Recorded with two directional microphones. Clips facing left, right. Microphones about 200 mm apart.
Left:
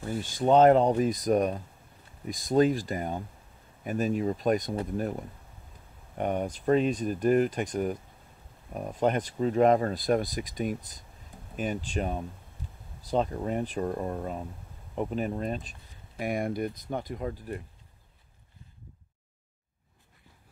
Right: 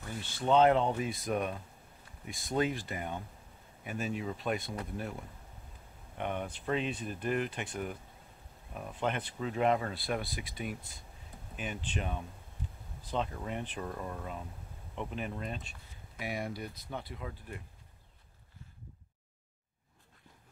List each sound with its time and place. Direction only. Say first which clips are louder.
0.4 s speech: left 6 dB; 45° left (ahead or behind)